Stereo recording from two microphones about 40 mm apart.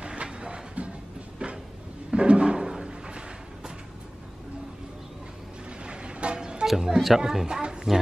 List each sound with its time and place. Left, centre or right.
0.0 s music: right
1.4 s a sound: right
5.7 s vehicle: right
6.8 s music: centre
7.2 s a woman's voice: centre
7.4 s a sound: right